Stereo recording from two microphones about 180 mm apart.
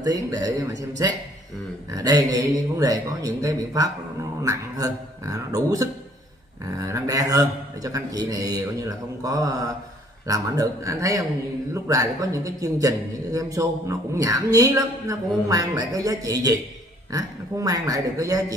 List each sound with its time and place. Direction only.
0.0 s a man's voice: 20° right (ahead or behind)